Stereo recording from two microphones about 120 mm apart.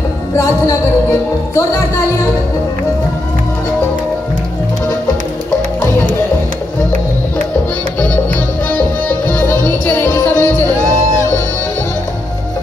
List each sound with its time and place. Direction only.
9.3 s music: 15° left (ahead or behind)